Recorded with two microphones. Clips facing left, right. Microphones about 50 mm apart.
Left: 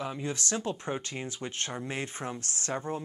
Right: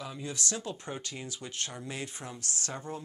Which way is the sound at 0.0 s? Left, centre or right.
Left.